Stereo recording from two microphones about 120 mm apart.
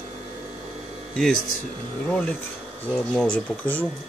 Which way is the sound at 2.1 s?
10° left (ahead or behind).